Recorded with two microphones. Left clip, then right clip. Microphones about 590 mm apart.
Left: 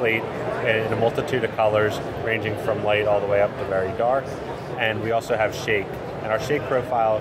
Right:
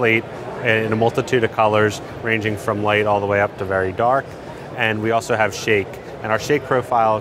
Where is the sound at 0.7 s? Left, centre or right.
Right.